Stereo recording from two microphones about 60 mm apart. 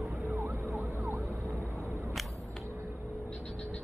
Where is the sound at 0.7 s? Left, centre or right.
Right.